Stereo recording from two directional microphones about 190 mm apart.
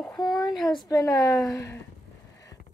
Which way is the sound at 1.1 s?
20° left (ahead or behind).